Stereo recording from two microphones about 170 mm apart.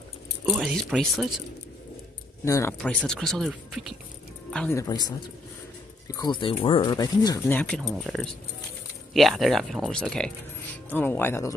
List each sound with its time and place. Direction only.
0.5 s speech: centre (ahead or behind)
2.4 s speech: 15° left (ahead or behind)
4.7 s speech: 20° left (ahead or behind)